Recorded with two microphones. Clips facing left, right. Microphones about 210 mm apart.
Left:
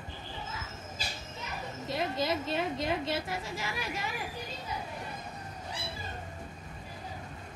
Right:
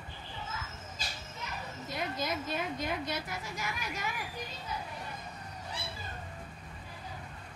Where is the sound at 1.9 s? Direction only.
25° left (ahead or behind).